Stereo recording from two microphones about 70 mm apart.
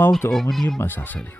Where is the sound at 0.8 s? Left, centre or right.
Left.